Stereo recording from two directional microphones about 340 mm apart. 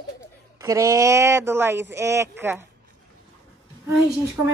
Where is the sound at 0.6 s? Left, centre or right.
Centre.